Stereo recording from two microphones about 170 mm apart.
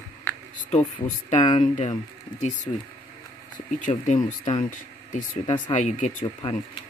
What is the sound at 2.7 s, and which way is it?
Speech, 10° left (ahead or behind).